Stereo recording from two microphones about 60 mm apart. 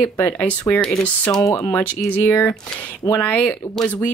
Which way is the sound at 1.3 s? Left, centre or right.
Left.